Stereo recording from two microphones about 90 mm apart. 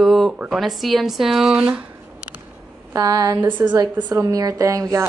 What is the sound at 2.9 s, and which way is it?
A woman's voice, 45° right (ahead or behind).